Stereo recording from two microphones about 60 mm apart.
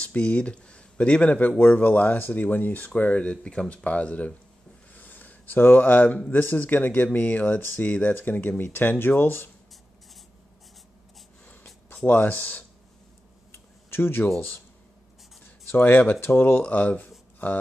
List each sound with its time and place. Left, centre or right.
0.0 s speech: left
4.9 s a sound: left
6.3 s speech: left
12.1 s speech: left
13.5 s tick-tock: left
15.7 s speech: left
16.2 s speech: left